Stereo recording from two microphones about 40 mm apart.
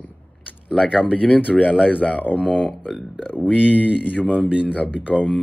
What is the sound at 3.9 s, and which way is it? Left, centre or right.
Speech, right.